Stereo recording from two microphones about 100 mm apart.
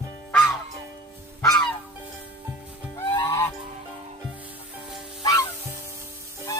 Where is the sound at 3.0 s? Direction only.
45° left (ahead or behind).